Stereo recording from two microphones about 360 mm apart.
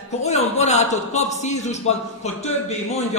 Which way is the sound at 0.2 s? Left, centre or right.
Centre.